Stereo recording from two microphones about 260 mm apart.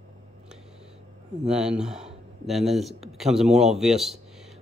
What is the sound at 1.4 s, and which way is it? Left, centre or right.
Speech, centre.